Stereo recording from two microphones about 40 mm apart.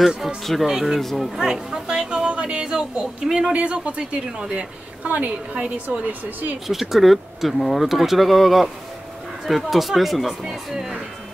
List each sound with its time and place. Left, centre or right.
0.7 s speech: centre
3.5 s speech: right
5.0 s a woman's voice: right
6.7 s speech: centre